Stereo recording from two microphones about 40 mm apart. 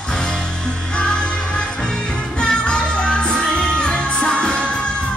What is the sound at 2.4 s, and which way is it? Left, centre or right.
Music, left.